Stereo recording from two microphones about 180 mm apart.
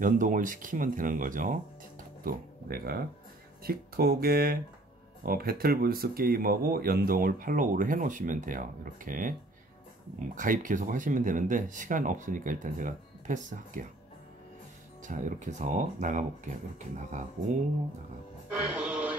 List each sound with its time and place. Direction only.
0.0 s speech: 45° right (ahead or behind)
15.0 s speech: 45° right (ahead or behind)
18.5 s music: 10° right (ahead or behind)